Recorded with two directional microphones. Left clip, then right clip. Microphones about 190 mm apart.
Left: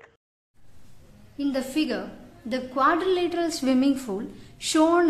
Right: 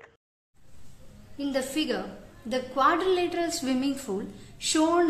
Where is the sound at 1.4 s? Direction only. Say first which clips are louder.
Left 2 dB; 20° left (ahead or behind).